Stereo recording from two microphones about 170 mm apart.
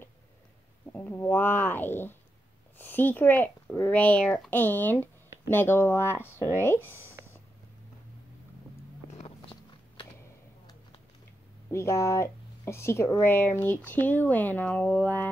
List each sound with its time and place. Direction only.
0.9 s speech: 10° left (ahead or behind)
9.1 s walk: 35° left (ahead or behind)
11.7 s speech: 15° left (ahead or behind)